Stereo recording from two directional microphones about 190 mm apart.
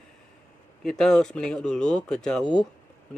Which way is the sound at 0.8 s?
Centre (ahead or behind).